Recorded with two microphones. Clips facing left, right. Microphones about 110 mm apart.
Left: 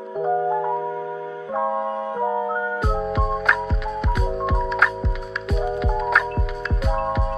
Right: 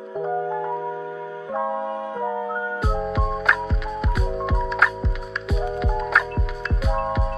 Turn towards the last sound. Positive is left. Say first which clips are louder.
# left 1 dB
turn(degrees=0)  # may be behind; listen again after turning